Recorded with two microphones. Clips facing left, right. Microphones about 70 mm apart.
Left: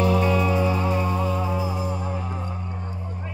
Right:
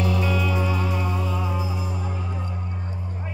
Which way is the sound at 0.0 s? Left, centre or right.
Left.